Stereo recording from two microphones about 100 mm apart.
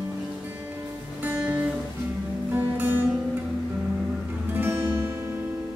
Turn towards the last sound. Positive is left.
turn(degrees=-25)  # may be behind; listen again after turning